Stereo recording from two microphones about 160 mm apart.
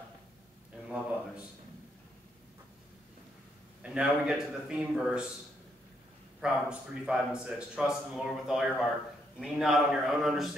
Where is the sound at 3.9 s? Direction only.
5° right (ahead or behind).